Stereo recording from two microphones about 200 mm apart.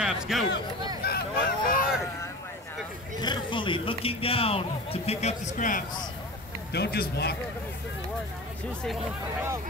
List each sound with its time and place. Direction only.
0.0 s a sound: centre (ahead or behind)
1.0 s honk: 50° left (ahead or behind)
3.2 s speech: 25° left (ahead or behind); by 5.9 s 40° left (ahead or behind)
6.7 s a man's voice: 55° left (ahead or behind)